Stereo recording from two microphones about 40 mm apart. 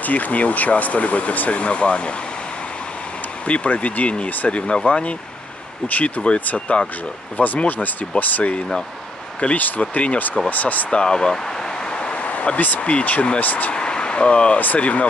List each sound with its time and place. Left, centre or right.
0.0 s speech: left
1.6 s speech: left
3.4 s speech: left
5.9 s speech: left
10.5 s speech: left
10.9 s a sound: left
12.5 s speech: left
13.7 s speech: left
14.6 s speech: left